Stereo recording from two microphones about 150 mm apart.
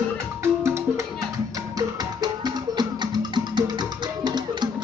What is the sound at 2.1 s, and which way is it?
Music, 30° right (ahead or behind).